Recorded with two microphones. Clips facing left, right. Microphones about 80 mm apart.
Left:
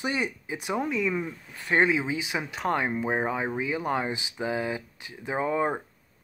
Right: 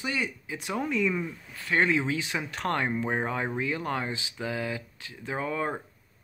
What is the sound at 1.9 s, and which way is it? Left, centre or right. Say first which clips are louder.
Speech: even; centre.